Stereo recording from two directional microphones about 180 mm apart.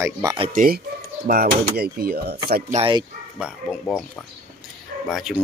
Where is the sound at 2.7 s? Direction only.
30° right (ahead or behind).